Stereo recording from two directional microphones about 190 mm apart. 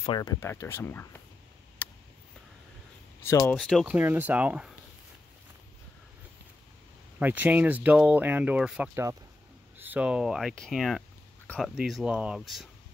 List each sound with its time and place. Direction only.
0.0 s speech: 25° left (ahead or behind)
1.8 s a sound: 10° left (ahead or behind)
3.3 s speech: 15° left (ahead or behind)
3.5 s speech: centre (ahead or behind)
3.8 s speech: 10° right (ahead or behind)
7.2 s speech: 10° right (ahead or behind)